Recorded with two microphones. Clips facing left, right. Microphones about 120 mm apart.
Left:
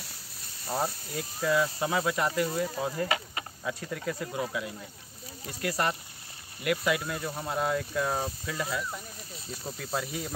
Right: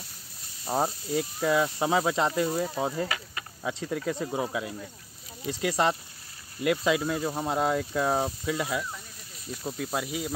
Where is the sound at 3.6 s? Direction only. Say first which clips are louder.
Right 5 dB; 25° right (ahead or behind).